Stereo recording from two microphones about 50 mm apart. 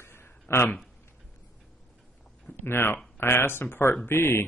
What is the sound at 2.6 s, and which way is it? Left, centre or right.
Speech, left.